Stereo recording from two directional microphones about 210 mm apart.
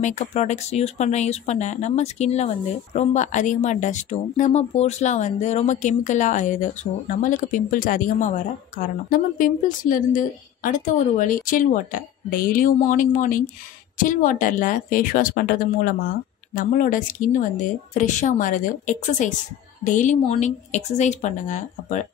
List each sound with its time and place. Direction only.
0.0 s speech: 35° left (ahead or behind)